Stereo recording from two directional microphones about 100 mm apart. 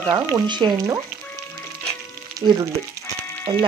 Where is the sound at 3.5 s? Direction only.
60° right (ahead or behind).